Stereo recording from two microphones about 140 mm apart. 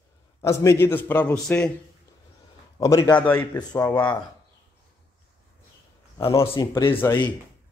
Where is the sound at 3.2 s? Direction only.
10° left (ahead or behind).